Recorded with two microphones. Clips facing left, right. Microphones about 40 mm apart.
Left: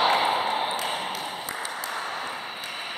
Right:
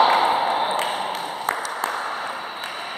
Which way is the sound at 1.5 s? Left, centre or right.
Right.